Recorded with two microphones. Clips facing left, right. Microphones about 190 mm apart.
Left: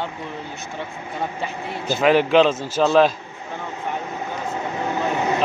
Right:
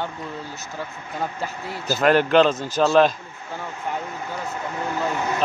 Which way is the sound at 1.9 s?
Centre (ahead or behind).